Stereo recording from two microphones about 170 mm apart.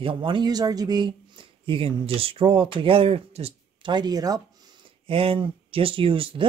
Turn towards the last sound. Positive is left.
turn(degrees=-30)  # may be behind; listen again after turning